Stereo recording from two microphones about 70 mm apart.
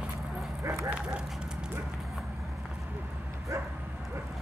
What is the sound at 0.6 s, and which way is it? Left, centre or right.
Dog, right.